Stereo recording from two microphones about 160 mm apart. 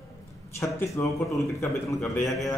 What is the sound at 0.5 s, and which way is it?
Speech, 20° left (ahead or behind).